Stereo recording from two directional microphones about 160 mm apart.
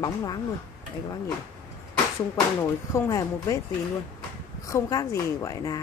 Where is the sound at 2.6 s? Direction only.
20° left (ahead or behind).